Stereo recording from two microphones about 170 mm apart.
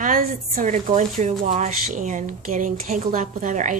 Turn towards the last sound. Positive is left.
turn(degrees=-45)  # may be behind; listen again after turning